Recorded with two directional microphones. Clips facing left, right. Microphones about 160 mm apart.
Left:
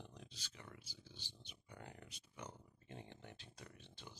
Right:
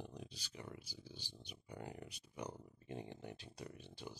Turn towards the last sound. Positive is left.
turn(degrees=-10)  # may be behind; listen again after turning